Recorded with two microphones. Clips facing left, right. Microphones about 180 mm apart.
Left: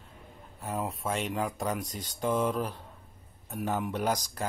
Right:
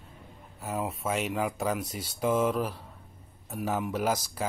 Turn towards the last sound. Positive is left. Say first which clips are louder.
# right 1 dB
turn(degrees=-5)  # may be behind; listen again after turning